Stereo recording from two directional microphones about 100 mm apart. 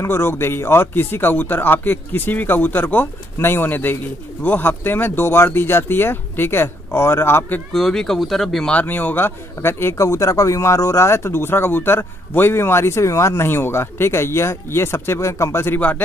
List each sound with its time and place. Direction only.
0.0 s speech: 25° left (ahead or behind)
7.7 s speech: 5° left (ahead or behind)
8.7 s speech: 15° left (ahead or behind)